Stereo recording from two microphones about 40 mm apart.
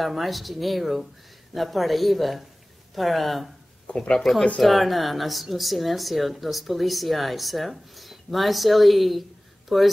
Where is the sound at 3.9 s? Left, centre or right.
Left.